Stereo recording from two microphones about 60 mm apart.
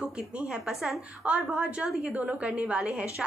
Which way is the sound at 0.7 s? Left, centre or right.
Centre.